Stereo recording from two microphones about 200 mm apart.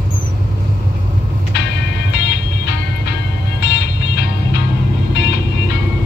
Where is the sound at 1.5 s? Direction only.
60° left (ahead or behind).